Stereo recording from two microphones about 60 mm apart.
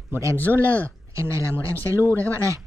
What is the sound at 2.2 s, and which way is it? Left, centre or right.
Speech, right.